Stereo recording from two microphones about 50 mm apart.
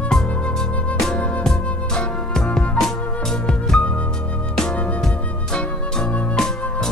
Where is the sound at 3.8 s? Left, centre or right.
Left.